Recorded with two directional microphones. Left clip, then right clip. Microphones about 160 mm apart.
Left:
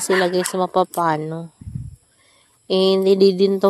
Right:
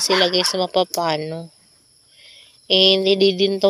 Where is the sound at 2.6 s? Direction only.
30° left (ahead or behind).